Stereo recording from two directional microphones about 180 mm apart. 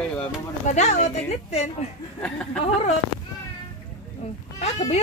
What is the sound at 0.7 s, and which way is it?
A woman's voice, 40° left (ahead or behind).